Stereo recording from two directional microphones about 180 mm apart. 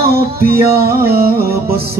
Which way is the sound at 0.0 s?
55° right (ahead or behind).